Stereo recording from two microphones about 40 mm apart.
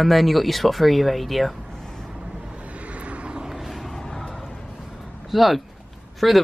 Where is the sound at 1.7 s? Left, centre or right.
Centre.